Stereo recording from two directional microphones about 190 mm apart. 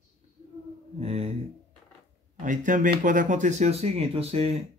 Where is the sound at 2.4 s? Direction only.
40° right (ahead or behind).